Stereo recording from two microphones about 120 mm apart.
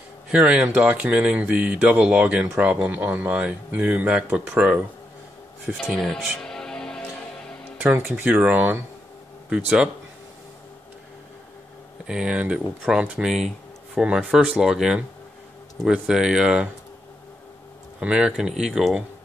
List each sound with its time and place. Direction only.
0.3 s speech: 10° right (ahead or behind)
5.9 s music: centre (ahead or behind)
7.8 s speech: 15° right (ahead or behind)
12.1 s speech: 5° right (ahead or behind)
18.0 s speech: 10° right (ahead or behind)